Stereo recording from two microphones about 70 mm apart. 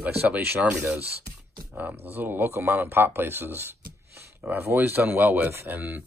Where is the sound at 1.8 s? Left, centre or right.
Right.